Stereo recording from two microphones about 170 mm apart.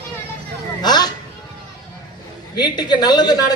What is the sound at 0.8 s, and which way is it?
Speech, 25° left (ahead or behind).